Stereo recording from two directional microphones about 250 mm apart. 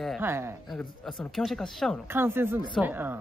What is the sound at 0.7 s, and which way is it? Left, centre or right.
Speech, centre.